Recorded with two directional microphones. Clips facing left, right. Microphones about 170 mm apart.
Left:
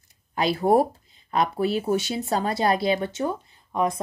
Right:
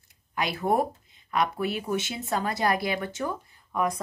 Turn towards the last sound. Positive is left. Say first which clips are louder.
# left 3 dB
turn(degrees=25)  # may be behind; listen again after turning